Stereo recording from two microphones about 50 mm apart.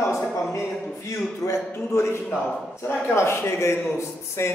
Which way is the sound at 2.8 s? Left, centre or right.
Left.